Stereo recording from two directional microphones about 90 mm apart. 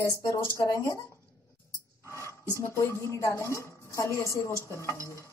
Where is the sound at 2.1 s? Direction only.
30° left (ahead or behind).